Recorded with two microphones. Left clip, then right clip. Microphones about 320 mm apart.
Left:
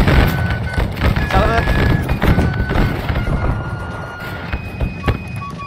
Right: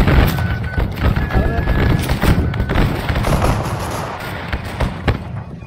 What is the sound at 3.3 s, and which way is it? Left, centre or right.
Vehicle, right.